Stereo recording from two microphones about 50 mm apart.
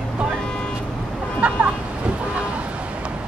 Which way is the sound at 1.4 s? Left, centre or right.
Right.